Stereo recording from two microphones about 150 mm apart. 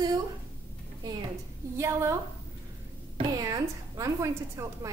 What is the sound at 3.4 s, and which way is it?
A woman's voice, 20° right (ahead or behind).